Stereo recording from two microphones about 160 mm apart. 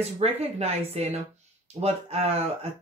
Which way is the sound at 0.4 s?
40° right (ahead or behind).